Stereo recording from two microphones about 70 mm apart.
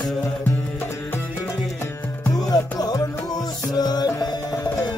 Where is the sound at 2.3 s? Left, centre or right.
Left.